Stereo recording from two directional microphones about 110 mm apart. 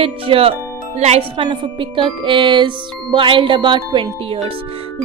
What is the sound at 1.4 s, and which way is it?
Music, 50° right (ahead or behind).